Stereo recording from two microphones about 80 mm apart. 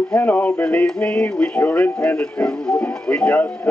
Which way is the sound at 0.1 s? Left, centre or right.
Left.